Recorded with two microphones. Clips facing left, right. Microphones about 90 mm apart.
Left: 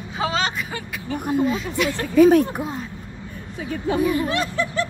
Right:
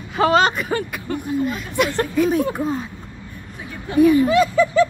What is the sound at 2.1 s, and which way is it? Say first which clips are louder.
Speech: left 6 dB; 55° left (ahead or behind).